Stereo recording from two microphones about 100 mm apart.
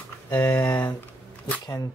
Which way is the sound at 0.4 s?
30° left (ahead or behind).